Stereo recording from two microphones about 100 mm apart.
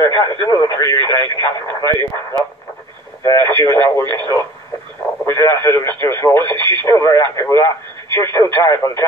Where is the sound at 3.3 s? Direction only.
25° left (ahead or behind).